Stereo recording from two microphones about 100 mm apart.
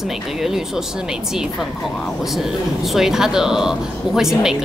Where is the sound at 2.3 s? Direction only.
Centre (ahead or behind).